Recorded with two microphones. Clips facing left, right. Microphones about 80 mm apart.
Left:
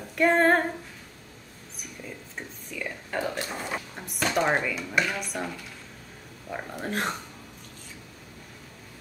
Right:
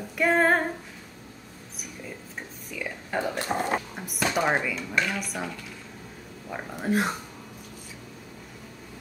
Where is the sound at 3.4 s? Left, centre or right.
Right.